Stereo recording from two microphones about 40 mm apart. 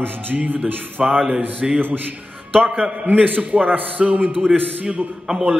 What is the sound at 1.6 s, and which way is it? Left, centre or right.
A man's voice, centre.